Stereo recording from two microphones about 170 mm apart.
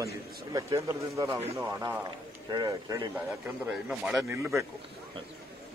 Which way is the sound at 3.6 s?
5° right (ahead or behind).